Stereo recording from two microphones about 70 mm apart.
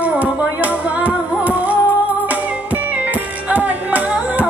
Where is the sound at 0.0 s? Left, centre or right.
Right.